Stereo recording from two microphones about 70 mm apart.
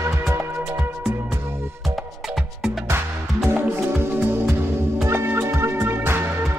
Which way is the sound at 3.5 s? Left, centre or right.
Right.